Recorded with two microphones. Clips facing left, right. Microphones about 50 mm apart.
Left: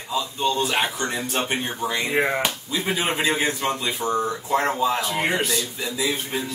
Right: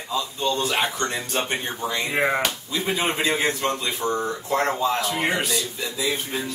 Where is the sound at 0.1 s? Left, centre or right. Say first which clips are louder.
Left 1 dB; centre.